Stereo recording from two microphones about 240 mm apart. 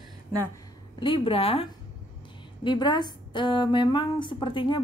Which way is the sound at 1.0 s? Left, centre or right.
Left.